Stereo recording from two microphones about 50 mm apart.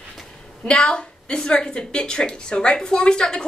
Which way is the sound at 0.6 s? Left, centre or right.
Centre.